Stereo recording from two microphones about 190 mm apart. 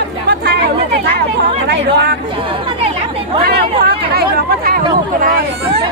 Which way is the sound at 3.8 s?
55° right (ahead or behind).